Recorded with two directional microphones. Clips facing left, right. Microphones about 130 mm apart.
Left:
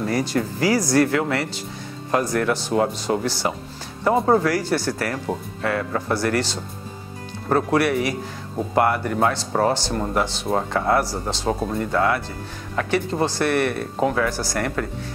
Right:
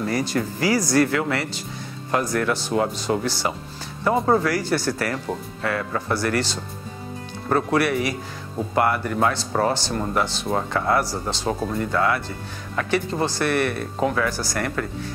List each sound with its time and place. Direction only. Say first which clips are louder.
0.1 s speech: left 1 dB; 35° left (ahead or behind)
7.4 s speech: left 1 dB; 30° left (ahead or behind)